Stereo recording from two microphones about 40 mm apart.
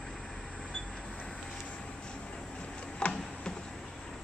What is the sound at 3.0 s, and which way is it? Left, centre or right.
Tick-tock, left.